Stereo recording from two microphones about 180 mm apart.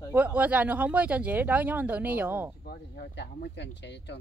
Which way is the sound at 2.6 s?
65° left (ahead or behind).